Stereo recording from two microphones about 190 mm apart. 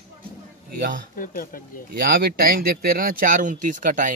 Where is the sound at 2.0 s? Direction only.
50° right (ahead or behind).